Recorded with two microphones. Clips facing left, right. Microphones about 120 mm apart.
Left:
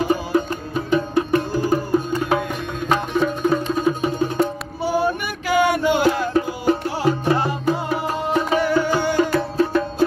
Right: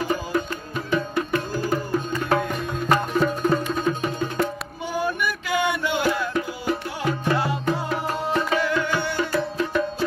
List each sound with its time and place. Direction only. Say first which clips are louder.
0.1 s music: left 5 dB; 20° left (ahead or behind)
2.9 s music: left 1 dB; centre (ahead or behind)
3.7 s music: left 4 dB; 10° left (ahead or behind)
4.8 s music: left 5 dB; 35° left (ahead or behind)
7.2 s music: left 3 dB; 25° left (ahead or behind)
7.6 s music: left 3 dB; 10° left (ahead or behind)
8.7 s music: left 6 dB; 40° left (ahead or behind)